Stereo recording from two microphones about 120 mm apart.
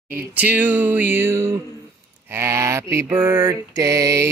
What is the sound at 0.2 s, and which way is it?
Mantra, 15° right (ahead or behind).